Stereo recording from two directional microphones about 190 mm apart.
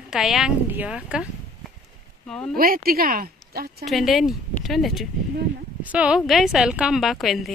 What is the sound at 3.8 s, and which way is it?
A woman's voice, centre (ahead or behind).